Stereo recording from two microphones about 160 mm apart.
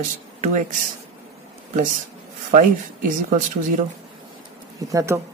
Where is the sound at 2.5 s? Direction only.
55° right (ahead or behind).